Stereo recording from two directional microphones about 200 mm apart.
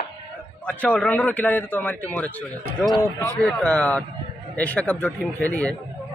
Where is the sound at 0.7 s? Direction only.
5° left (ahead or behind).